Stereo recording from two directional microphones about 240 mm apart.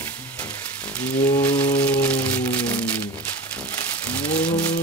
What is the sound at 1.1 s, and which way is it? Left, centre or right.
Music, centre.